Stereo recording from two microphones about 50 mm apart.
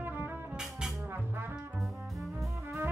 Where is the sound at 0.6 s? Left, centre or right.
Centre.